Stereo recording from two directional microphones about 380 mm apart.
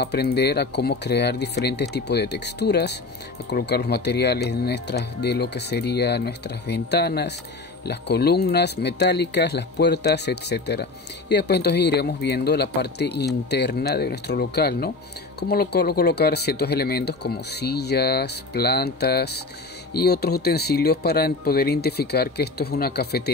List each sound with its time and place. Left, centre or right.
0.0 s speech: left